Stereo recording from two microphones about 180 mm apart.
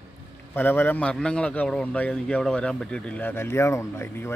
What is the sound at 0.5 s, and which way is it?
A man's voice, 10° left (ahead or behind).